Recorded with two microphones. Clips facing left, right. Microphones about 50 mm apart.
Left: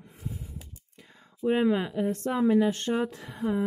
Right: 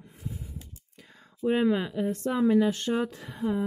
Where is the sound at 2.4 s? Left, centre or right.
Centre.